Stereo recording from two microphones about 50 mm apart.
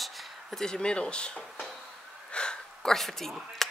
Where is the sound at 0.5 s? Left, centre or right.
Centre.